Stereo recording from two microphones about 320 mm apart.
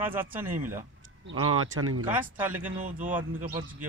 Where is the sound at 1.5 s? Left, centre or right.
Right.